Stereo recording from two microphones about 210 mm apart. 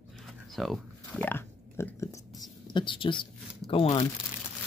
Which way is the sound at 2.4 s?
20° left (ahead or behind).